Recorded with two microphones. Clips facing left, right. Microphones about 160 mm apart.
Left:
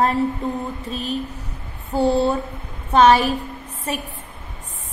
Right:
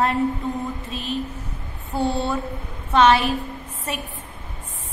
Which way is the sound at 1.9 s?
35° left (ahead or behind).